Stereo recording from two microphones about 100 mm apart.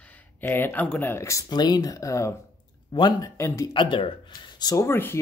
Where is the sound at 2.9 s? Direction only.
45° left (ahead or behind).